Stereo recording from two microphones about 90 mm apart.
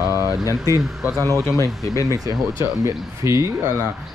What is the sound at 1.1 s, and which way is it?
Speech, 40° right (ahead or behind).